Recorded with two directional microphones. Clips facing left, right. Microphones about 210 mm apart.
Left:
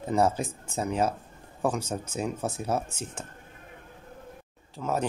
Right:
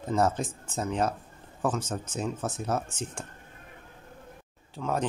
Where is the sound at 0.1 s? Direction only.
10° left (ahead or behind).